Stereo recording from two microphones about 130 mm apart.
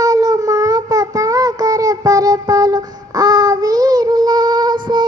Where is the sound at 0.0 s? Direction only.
30° right (ahead or behind).